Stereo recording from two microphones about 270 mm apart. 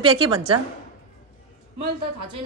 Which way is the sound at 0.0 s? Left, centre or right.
Centre.